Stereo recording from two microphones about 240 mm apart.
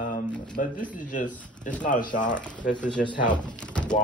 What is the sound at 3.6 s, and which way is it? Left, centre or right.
Speech, centre.